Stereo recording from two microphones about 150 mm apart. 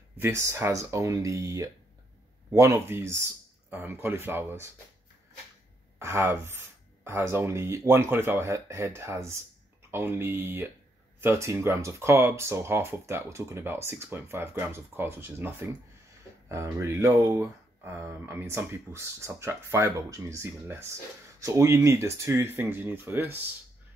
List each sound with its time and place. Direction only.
0.2 s speech: 20° right (ahead or behind)
5.9 s speech: 20° right (ahead or behind)